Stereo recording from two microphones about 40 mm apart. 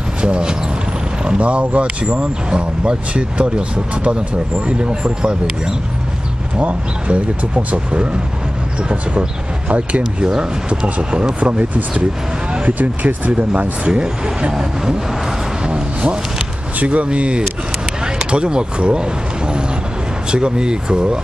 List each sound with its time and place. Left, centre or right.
0.2 s a sound: right
1.2 s speech: right
6.6 s speech: right
9.7 s speech: right
11.3 s speech: right
15.7 s a sound: right
16.8 s speech: right